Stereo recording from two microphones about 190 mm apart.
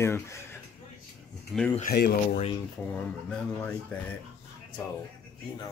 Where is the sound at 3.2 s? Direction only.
5° left (ahead or behind).